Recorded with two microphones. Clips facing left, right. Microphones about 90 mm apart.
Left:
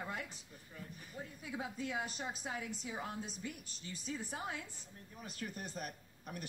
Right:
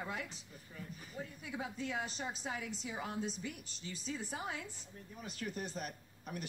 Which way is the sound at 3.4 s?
45° left (ahead or behind).